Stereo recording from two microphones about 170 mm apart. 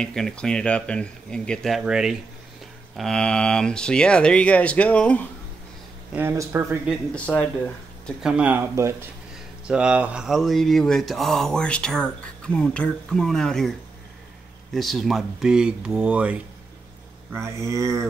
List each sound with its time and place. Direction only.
0.0 s speech: 5° left (ahead or behind)
6.1 s speech: 15° right (ahead or behind)
8.2 s speech: 5° right (ahead or behind)